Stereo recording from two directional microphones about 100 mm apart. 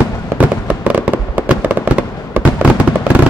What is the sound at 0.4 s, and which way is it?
Fireworks, 15° right (ahead or behind).